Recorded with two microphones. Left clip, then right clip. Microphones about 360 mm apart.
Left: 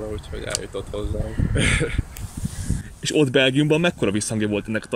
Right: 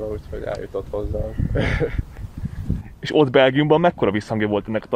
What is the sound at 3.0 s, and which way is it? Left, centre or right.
Speech, right.